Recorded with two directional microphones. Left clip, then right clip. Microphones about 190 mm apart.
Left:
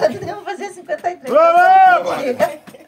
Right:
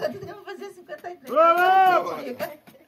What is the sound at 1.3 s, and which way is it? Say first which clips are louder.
Speech: left 7 dB; 20° left (ahead or behind).